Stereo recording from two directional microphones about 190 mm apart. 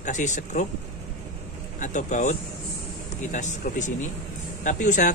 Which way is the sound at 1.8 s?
40° left (ahead or behind).